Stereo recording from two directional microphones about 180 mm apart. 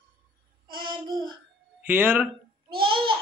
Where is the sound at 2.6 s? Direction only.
30° right (ahead or behind).